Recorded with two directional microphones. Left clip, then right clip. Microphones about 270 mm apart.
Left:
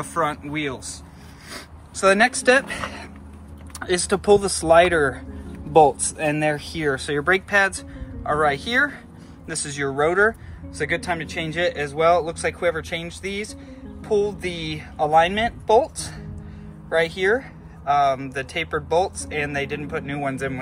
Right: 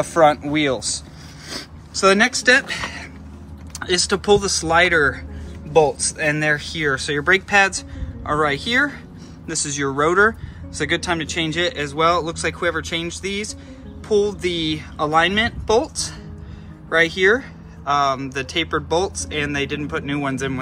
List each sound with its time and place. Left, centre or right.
0.0 s speech: centre
1.5 s speech: centre
14.0 s music: centre
14.4 s speech: centre